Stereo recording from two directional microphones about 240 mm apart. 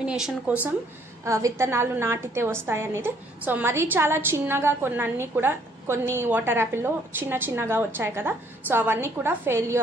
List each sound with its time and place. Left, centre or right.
0.0 s a woman's voice: centre